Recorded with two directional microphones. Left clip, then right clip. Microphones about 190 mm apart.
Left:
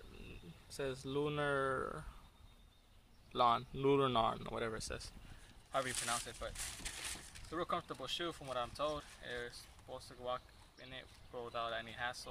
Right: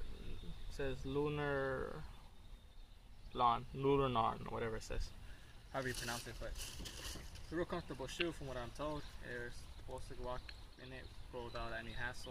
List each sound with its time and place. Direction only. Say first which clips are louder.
0.7 s speech: left 1 dB; 45° left (ahead or behind)
3.3 s speech: left 2 dB; 50° left (ahead or behind)
5.7 s speech: left 4 dB; 20° left (ahead or behind)